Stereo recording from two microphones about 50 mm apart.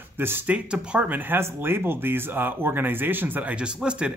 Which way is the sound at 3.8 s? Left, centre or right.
Right.